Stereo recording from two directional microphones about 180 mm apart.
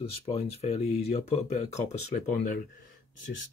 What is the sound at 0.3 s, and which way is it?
Speech, 35° left (ahead or behind).